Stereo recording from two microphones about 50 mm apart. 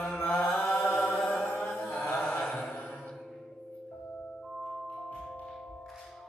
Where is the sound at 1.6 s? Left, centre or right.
Left.